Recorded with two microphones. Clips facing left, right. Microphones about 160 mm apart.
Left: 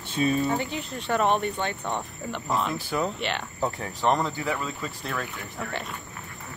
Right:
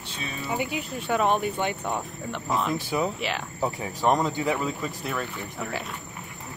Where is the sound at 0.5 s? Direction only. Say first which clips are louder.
Left 1 dB; 10° right (ahead or behind).